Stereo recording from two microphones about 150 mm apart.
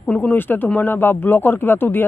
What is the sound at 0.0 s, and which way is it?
Speech, 10° left (ahead or behind).